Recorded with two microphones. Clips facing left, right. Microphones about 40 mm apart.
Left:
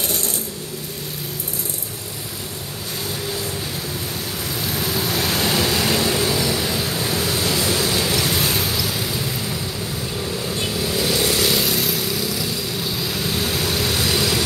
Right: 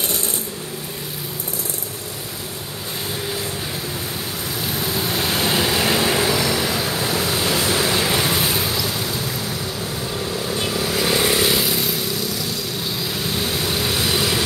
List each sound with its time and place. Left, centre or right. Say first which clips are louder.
4.6 s vehicle: even; centre
7.5 s a sound: right 1 dB; right; by 9.6 s centre
10.8 s vehicle: right 1 dB; right